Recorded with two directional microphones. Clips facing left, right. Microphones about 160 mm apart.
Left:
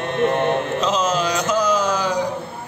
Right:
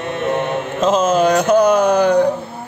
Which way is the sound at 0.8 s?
50° right (ahead or behind).